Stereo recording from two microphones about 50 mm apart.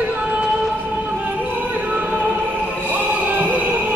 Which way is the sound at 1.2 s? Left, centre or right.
Right.